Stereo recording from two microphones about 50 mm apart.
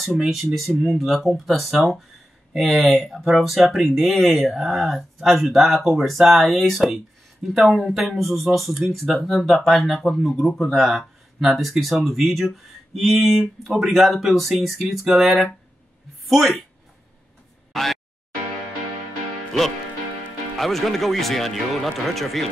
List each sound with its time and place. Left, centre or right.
0.2 s speech: centre
10.7 s speech: centre
17.7 s a sound: centre
20.5 s speech: centre